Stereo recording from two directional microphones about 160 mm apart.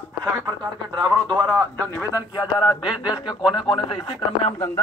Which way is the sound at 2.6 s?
5° right (ahead or behind).